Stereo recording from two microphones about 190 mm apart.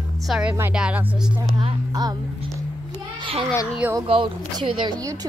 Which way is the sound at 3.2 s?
30° right (ahead or behind).